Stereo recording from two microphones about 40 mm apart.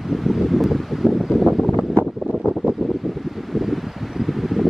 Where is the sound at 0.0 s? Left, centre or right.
Centre.